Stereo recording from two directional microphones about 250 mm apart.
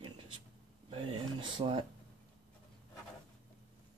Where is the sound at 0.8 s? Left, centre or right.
Centre.